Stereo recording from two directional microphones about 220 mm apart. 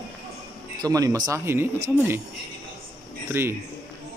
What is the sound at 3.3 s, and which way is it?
Speech, 10° right (ahead or behind).